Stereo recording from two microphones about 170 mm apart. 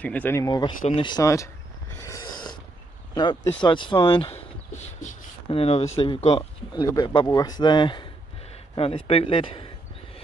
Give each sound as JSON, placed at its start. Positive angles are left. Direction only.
{"t": 0.0, "sound": "speech", "side_deg": 10}
{"t": 0.4, "sound": "speech", "side_deg": 25}
{"t": 0.8, "sound": "a sound", "side_deg": 30}
{"t": 3.6, "sound": "speech", "side_deg": 25}